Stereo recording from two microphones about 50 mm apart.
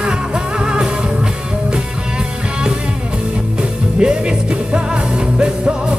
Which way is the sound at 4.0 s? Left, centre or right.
Centre.